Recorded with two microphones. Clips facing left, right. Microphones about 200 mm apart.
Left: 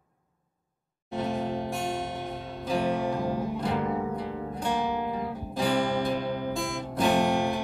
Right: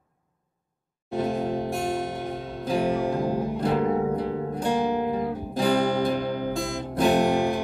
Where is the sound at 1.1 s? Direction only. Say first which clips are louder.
Right 4 dB; 40° right (ahead or behind).